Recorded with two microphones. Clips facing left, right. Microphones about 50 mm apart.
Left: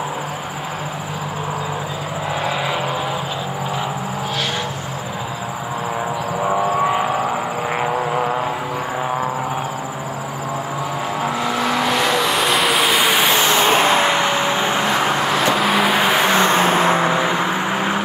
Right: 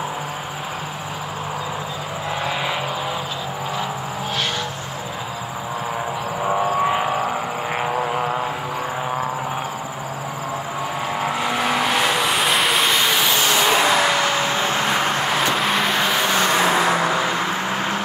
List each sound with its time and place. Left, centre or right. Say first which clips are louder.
11.5 s vehicle: left 1 dB; centre
11.8 s vehicle: left 2 dB; centre
13.2 s vehicle: left 3 dB; left
15.0 s vehicle: left 3 dB; centre
16.0 s vehicle: left 4 dB; left